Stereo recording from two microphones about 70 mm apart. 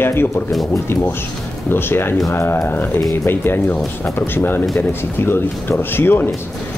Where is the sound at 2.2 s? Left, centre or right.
Left.